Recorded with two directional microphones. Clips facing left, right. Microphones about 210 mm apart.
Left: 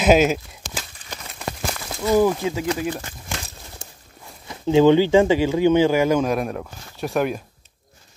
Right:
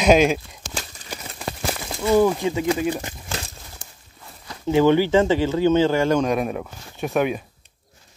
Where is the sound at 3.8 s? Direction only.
25° left (ahead or behind).